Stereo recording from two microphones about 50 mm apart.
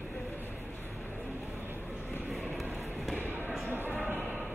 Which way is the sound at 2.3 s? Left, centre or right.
Centre.